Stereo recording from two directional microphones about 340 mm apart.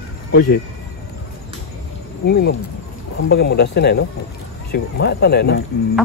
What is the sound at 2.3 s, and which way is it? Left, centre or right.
Speech, left.